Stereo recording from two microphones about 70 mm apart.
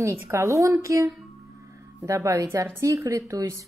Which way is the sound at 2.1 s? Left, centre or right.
Right.